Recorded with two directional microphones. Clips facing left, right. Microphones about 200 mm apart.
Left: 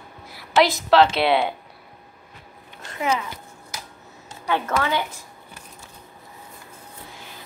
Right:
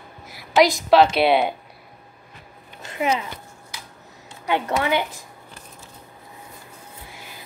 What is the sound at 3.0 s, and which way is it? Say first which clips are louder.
Speech: right 1 dB; 20° right (ahead or behind).